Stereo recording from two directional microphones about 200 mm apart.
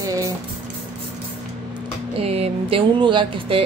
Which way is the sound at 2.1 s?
30° right (ahead or behind).